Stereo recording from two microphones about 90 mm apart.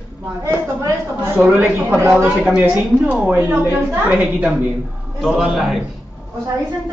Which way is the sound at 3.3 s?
35° right (ahead or behind).